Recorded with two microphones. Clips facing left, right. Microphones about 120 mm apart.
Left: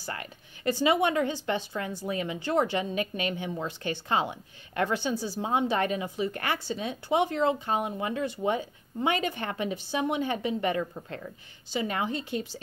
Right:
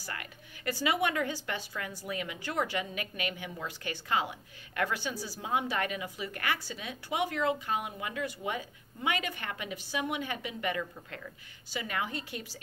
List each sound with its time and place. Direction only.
0.0 s a woman's voice: 30° left (ahead or behind)